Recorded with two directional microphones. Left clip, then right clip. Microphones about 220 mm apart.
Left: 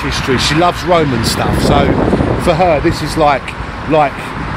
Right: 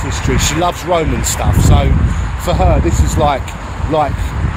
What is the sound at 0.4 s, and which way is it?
Speech, 15° left (ahead or behind).